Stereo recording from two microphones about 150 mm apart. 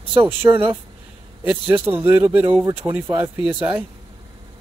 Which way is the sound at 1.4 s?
15° right (ahead or behind).